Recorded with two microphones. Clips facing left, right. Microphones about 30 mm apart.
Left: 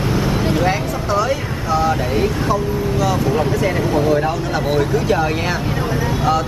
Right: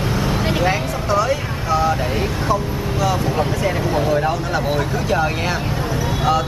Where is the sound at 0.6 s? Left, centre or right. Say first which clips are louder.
Left 1 dB; centre.